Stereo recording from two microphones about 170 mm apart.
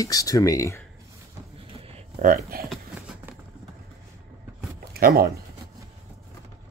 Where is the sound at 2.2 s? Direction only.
55° right (ahead or behind).